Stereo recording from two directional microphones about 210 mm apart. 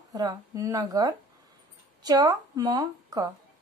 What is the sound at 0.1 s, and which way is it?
A woman's voice, 20° right (ahead or behind).